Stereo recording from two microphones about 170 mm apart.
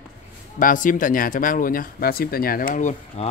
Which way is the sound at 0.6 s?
55° left (ahead or behind).